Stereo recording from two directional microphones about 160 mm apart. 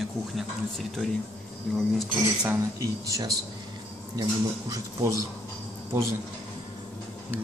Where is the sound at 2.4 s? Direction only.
15° right (ahead or behind).